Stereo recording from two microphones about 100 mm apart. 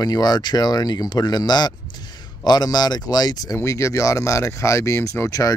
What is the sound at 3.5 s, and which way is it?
Speech, 30° left (ahead or behind).